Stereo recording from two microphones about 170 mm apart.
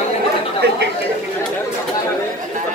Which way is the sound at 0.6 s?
80° right.